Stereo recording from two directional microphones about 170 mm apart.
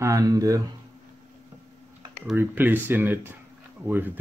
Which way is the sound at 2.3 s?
10° right (ahead or behind).